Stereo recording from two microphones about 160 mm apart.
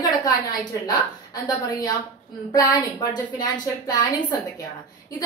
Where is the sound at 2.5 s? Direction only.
20° left (ahead or behind).